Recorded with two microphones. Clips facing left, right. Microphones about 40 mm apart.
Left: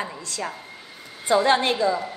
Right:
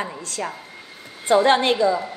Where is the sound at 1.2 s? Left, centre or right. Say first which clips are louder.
Right 3 dB; right.